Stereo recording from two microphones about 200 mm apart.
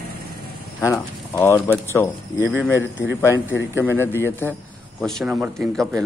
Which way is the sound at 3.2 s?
10° left (ahead or behind).